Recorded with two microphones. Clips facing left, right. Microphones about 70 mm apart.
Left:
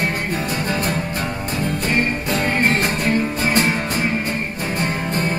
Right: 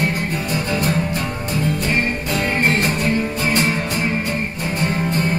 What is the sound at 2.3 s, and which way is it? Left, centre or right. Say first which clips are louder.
Music: even; left.